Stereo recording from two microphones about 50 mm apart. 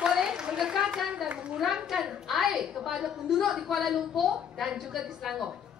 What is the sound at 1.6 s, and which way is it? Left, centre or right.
A woman's voice, centre.